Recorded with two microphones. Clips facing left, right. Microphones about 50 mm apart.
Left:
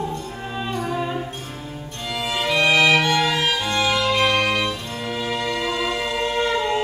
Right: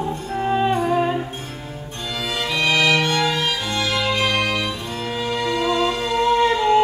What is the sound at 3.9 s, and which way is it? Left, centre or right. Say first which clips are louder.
Music: right 1 dB; centre.